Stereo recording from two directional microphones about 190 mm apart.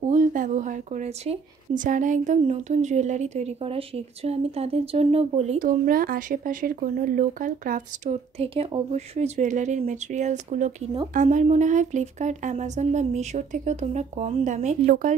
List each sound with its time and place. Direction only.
0.1 s speech: 40° right (ahead or behind)